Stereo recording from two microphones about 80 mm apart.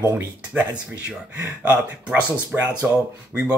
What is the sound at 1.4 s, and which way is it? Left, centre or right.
A man's voice, centre.